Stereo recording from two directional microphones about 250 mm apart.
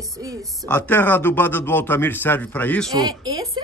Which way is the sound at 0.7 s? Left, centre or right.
Centre.